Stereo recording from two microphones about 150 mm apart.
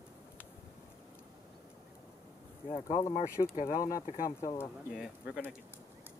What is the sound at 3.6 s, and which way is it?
Speech, 70° left (ahead or behind).